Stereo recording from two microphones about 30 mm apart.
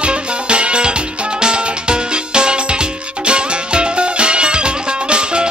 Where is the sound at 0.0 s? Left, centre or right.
Right.